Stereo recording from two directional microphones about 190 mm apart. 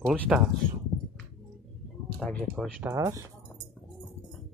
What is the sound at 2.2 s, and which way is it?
Speech, centre (ahead or behind).